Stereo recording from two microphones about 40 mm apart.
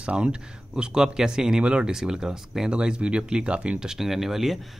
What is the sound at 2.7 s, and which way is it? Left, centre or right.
Speech, right.